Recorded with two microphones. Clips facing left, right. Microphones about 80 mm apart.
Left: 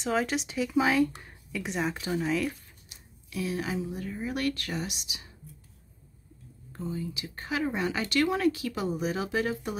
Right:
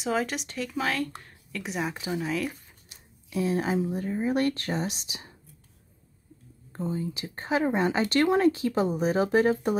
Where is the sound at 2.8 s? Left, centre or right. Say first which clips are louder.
Even; right.